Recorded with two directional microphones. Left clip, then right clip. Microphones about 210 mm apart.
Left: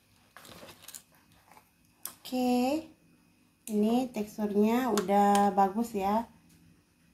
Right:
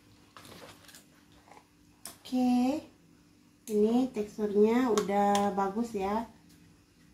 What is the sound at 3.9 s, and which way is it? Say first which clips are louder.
Speech: right 1 dB; 45° left (ahead or behind).